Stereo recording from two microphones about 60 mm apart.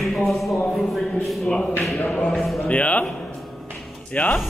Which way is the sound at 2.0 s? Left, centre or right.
Left.